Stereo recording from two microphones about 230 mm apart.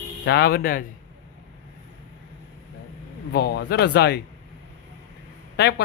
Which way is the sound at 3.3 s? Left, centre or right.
Left.